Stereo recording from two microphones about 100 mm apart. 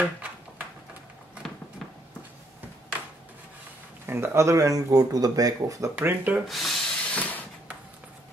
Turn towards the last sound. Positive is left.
turn(degrees=15)  # may be behind; listen again after turning